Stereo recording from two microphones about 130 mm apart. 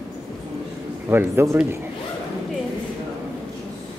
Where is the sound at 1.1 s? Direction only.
20° right (ahead or behind).